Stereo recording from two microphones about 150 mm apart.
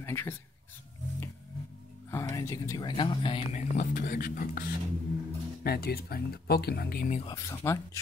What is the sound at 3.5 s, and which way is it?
Speech, 60° left (ahead or behind).